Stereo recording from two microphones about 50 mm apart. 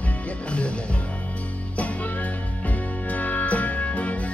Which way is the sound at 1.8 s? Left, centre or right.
Left.